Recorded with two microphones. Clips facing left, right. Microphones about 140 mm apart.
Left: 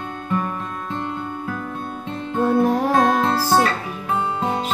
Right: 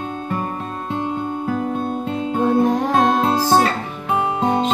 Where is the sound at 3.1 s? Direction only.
20° right (ahead or behind).